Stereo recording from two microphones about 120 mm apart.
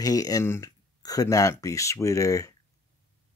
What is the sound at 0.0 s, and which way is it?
Speech, 30° left (ahead or behind).